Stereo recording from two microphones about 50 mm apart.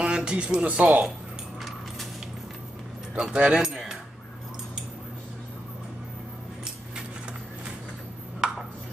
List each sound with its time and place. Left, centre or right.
0.0 s speech: centre
3.2 s speech: centre
8.4 s ping: centre